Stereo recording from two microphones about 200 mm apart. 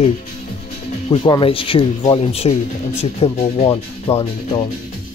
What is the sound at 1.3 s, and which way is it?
Speech, 25° left (ahead or behind).